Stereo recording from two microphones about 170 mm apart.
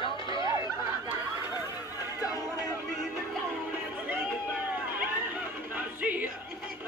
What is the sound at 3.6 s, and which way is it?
Music, 10° right (ahead or behind).